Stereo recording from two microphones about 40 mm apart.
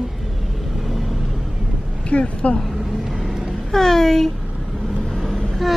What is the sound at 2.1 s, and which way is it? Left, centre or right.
Speech, left.